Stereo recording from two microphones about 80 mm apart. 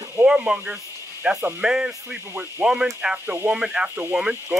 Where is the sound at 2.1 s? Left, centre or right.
Right.